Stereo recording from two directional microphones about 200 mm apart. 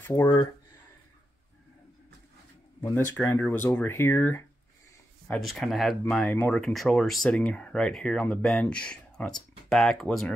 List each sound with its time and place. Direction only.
0.0 s speech: 15° left (ahead or behind)
2.8 s speech: 10° left (ahead or behind)
5.3 s speech: centre (ahead or behind)